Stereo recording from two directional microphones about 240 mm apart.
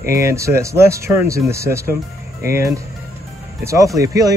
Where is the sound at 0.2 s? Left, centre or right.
Centre.